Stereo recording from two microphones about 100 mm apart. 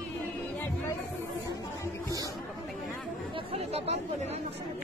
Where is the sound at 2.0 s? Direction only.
35° right (ahead or behind).